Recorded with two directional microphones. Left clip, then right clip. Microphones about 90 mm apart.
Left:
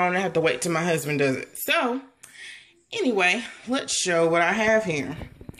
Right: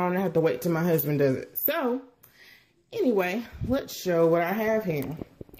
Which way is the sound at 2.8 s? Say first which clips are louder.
Even; 50° right (ahead or behind).